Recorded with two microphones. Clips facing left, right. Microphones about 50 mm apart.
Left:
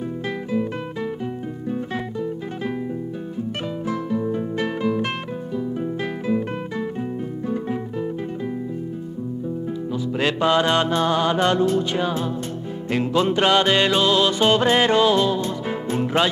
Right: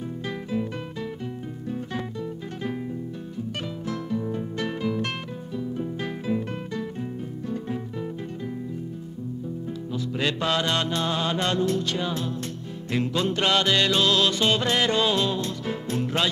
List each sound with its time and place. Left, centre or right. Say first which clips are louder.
3.8 s music: left 5 dB; centre
10.1 s music: left 6 dB; left
11.6 s music: left 5 dB; centre